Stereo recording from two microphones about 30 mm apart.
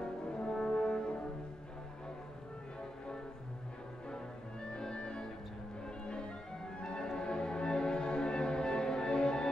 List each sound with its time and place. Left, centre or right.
0.0 s brass instrument: left
4.6 s music: left